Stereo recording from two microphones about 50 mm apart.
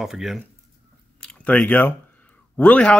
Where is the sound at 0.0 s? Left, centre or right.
Centre.